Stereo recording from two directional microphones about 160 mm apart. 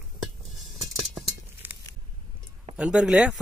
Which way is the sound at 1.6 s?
10° right (ahead or behind).